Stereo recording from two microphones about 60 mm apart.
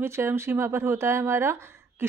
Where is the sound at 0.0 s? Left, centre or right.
Right.